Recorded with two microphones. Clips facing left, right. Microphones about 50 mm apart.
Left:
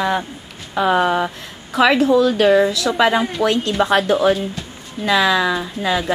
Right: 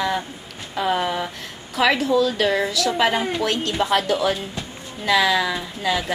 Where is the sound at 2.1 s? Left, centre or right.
Left.